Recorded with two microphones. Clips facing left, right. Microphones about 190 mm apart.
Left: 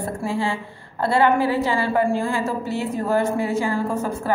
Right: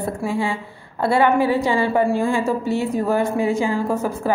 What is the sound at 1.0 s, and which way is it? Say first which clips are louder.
A woman's voice: right 2 dB; 15° right (ahead or behind).